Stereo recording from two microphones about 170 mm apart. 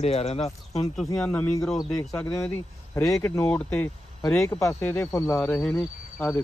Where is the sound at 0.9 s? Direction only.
10° left (ahead or behind).